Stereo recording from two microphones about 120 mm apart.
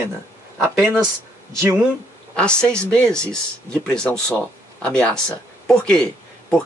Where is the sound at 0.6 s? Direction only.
20° right (ahead or behind).